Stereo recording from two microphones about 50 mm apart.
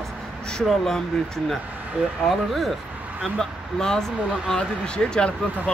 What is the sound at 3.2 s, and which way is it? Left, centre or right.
Speech, centre.